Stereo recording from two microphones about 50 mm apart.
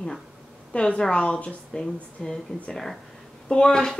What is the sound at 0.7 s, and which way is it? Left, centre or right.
Speech, left.